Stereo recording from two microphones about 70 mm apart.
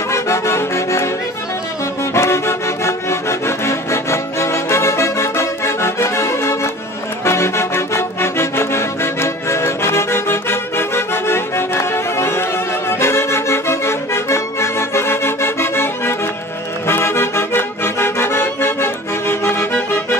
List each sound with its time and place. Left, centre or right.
0.1 s accordion: left
2.1 s music: left
13.0 s accordion: left